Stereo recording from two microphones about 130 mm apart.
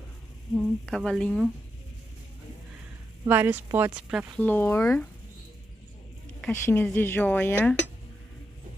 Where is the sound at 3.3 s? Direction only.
15° right (ahead or behind).